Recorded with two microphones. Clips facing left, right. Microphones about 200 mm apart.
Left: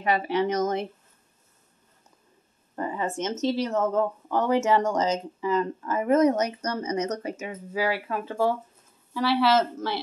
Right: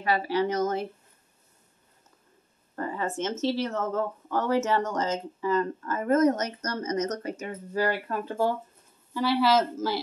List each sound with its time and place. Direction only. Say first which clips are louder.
0.0 s speech: left 1 dB; 20° left (ahead or behind)
3.0 s speech: left 1 dB; 20° left (ahead or behind); by 9.9 s centre (ahead or behind)